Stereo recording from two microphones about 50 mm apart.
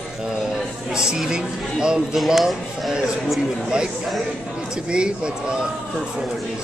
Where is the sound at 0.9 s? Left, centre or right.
Centre.